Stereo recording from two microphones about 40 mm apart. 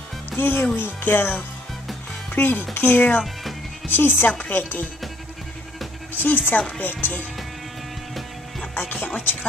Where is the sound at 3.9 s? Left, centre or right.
Left.